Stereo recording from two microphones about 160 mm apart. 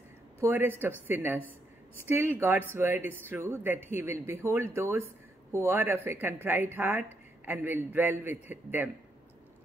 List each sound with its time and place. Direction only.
0.4 s a woman's voice: 15° right (ahead or behind)